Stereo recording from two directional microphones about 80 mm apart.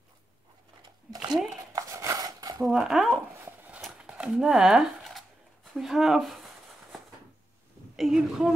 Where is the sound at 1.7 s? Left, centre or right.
Right.